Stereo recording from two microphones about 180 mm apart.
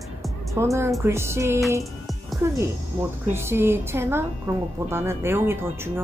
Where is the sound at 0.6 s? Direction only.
15° right (ahead or behind).